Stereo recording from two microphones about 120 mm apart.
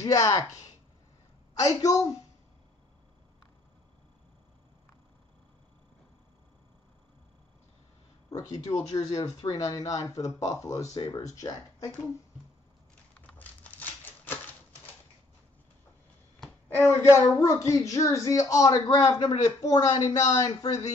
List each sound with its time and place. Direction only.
0.0 s a child's voice: 25° left (ahead or behind)
8.3 s a child's voice: 30° left (ahead or behind)
13.3 s crumpling: 15° left (ahead or behind)
16.6 s a child's voice: 20° left (ahead or behind)